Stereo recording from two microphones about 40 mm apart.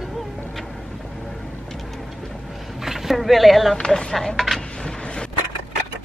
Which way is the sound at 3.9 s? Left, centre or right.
Centre.